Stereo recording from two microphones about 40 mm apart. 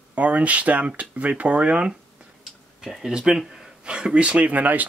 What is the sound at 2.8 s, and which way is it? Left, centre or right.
Speech, centre.